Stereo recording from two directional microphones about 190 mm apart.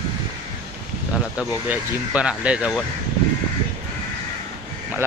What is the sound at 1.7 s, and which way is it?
Speech, 5° right (ahead or behind).